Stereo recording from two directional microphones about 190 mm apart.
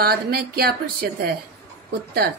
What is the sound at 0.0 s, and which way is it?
A woman's voice, 55° right (ahead or behind).